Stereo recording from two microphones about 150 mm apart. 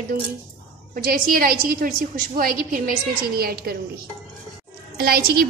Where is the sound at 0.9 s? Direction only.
75° right (ahead or behind).